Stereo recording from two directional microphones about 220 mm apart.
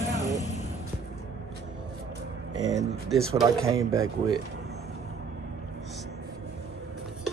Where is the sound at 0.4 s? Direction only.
30° left (ahead or behind).